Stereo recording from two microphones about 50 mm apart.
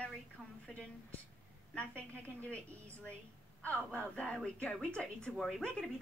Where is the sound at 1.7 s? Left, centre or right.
Left.